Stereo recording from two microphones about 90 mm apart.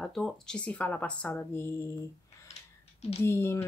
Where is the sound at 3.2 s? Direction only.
25° left (ahead or behind).